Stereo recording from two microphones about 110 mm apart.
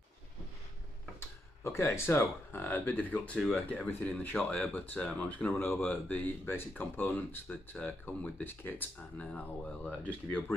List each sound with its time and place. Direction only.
1.6 s speech: 20° left (ahead or behind)
3.3 s speech: centre (ahead or behind)
3.7 s speech: 15° left (ahead or behind)